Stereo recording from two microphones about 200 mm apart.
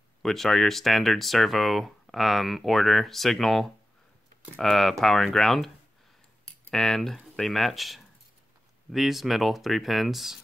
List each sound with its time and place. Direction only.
0.2 s speech: centre (ahead or behind)
6.7 s speech: centre (ahead or behind)